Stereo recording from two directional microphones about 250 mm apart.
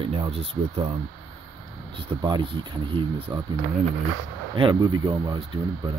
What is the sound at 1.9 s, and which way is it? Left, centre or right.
Speech, centre.